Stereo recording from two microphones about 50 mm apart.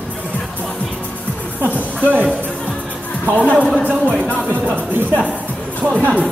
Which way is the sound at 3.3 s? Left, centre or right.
Left.